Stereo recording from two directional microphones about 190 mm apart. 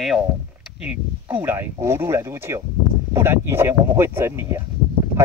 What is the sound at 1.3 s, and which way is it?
Speech, 10° right (ahead or behind).